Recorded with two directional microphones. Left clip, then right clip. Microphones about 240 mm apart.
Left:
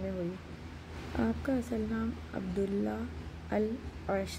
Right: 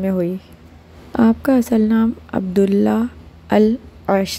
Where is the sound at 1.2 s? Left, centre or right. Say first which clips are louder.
Right 18 dB; right.